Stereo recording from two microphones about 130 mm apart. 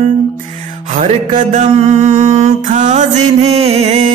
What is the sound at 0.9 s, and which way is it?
Mantra, 75° right (ahead or behind).